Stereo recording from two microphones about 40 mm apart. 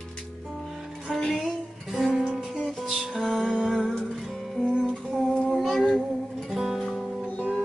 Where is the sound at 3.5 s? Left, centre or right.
Centre.